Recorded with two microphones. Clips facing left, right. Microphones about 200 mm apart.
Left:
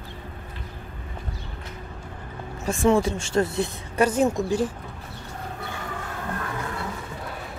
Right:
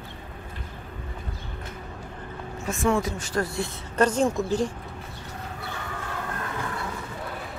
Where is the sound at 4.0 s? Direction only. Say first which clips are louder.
Left 1 dB; 5° left (ahead or behind).